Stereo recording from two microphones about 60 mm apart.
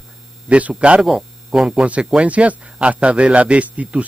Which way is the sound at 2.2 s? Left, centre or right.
Right.